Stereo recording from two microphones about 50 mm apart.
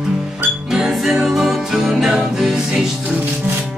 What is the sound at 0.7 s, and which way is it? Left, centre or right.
Music, centre.